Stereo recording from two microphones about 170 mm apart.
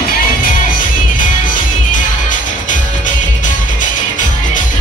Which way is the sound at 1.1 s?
50° left (ahead or behind).